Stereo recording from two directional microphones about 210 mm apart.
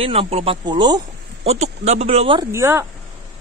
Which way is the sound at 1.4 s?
30° right (ahead or behind).